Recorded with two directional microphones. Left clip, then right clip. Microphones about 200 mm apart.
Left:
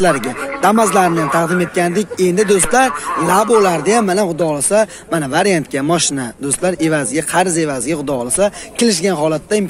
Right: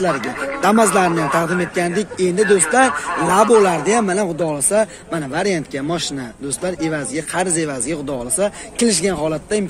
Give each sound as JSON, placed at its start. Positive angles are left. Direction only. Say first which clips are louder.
{"t": 0.0, "sound": "speech", "louder": "left 4 dB", "side_deg": 20}